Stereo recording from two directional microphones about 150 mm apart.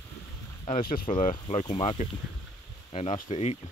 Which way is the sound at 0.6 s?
70° left (ahead or behind).